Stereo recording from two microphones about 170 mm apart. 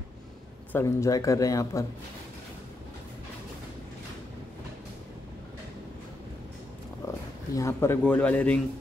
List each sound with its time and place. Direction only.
0.7 s speech: 15° left (ahead or behind)
7.1 s speech: 15° left (ahead or behind)